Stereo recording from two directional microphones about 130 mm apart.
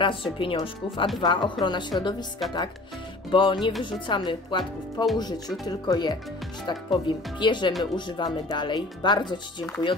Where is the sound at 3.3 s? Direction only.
35° left (ahead or behind).